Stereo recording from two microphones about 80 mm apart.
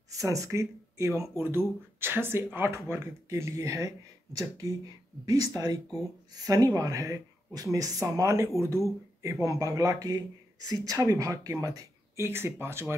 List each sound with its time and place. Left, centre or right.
0.1 s speech: right